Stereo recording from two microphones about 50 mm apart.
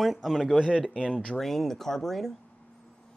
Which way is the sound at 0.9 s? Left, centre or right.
Left.